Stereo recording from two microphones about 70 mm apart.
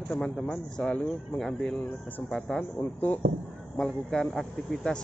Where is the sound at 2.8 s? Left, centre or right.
Left.